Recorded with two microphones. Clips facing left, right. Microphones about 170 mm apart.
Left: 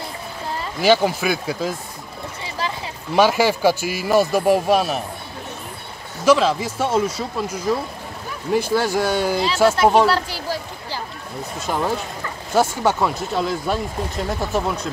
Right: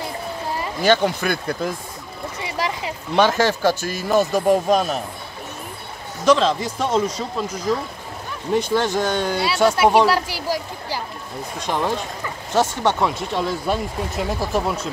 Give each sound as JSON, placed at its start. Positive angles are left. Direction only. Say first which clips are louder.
{"t": 0.7, "sound": "speech", "louder": "left 2 dB", "side_deg": 10}
{"t": 2.4, "sound": "a sound", "louder": "right 2 dB", "side_deg": -20}
{"t": 3.2, "sound": "speech", "louder": "left 1 dB", "side_deg": 10}
{"t": 6.2, "sound": "speech", "louder": "left 1 dB", "side_deg": 5}
{"t": 10.0, "sound": "a sound", "louder": "right 1 dB", "side_deg": -10}
{"t": 11.6, "sound": "speech", "louder": "even", "side_deg": 5}